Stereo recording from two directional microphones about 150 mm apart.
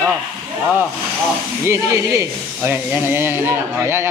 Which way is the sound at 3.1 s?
15° right (ahead or behind).